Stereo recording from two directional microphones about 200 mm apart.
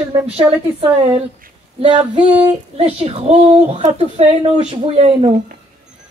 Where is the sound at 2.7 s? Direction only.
30° right (ahead or behind).